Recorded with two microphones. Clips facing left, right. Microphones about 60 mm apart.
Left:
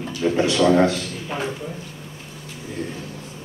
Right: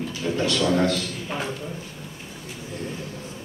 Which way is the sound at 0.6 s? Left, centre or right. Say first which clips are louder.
Left 6 dB; left.